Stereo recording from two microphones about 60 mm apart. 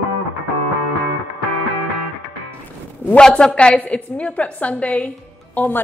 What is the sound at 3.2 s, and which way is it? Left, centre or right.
A woman's voice, centre.